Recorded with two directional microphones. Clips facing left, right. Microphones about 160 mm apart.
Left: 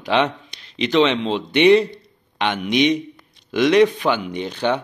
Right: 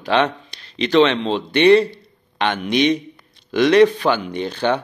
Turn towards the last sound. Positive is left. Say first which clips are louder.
# right 1 dB
turn(degrees=15)  # may be behind; listen again after turning